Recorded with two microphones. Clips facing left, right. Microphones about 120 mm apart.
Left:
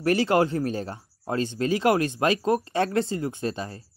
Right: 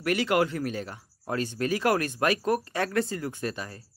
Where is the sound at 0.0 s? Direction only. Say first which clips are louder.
Left 4 dB; 35° left (ahead or behind).